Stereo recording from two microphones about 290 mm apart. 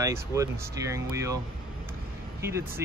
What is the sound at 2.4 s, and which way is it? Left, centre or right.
Speech, centre.